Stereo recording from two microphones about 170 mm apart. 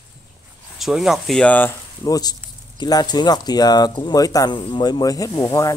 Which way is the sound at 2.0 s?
20° left (ahead or behind).